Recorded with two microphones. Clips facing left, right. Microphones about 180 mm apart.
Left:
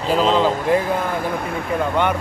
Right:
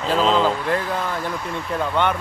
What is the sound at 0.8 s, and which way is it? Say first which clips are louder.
Speech: left 3 dB; 50° left (ahead or behind).